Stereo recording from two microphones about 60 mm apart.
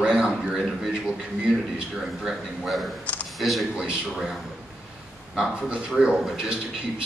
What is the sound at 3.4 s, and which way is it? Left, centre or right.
Speech, centre.